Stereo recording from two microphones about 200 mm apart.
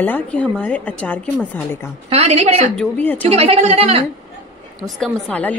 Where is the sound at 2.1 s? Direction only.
30° right (ahead or behind).